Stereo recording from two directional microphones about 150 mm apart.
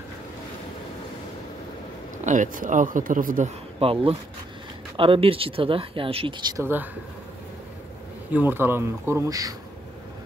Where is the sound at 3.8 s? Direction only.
40° right (ahead or behind).